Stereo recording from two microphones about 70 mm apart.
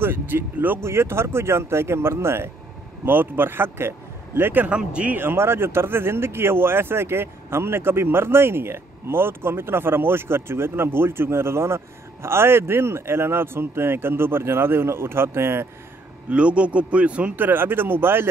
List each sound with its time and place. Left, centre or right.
0.0 s speech: right
4.6 s a man's voice: centre
5.1 s speech: right
16.3 s a man's voice: centre
17.4 s speech: right